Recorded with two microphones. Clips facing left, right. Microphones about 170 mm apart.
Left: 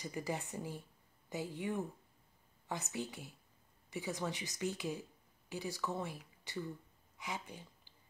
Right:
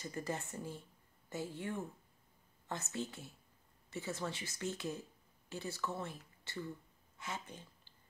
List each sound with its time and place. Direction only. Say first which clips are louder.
0.0 s speech: left 1 dB; 15° left (ahead or behind)